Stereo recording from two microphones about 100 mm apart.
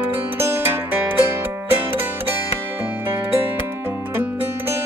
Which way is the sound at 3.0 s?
20° right (ahead or behind).